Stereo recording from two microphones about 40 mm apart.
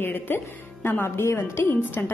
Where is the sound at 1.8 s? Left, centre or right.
Left.